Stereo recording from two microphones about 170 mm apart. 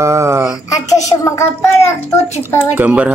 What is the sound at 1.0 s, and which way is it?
Child singing, 20° left (ahead or behind).